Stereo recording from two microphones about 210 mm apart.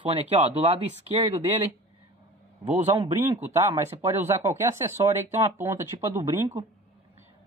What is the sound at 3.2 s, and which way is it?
Speech, 10° right (ahead or behind).